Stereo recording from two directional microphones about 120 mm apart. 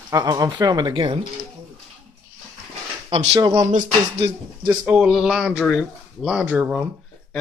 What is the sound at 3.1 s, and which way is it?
Speech, 30° right (ahead or behind).